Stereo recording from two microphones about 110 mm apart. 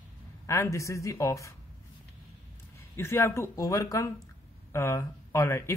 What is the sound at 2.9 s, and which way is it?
Speech, 20° left (ahead or behind).